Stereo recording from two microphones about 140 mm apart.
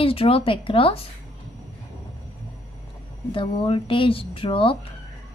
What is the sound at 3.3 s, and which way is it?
Speech, 40° left (ahead or behind).